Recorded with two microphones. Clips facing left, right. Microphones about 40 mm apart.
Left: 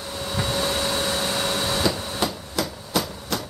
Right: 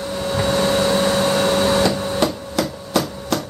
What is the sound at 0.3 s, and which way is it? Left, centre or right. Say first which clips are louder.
Vacuum cleaner: right 7 dB; centre.